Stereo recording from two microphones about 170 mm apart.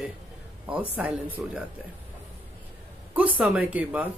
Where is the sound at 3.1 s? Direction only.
10° right (ahead or behind).